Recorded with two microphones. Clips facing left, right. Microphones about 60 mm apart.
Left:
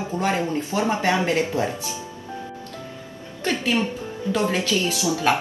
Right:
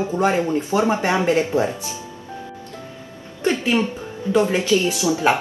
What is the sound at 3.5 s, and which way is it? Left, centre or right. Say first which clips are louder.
A woman's voice: right 3 dB; right.